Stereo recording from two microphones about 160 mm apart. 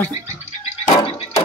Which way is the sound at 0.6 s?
40° left (ahead or behind).